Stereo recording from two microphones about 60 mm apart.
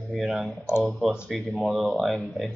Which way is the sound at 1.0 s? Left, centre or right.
Centre.